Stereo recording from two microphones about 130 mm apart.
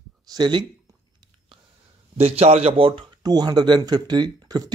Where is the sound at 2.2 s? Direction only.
50° right (ahead or behind).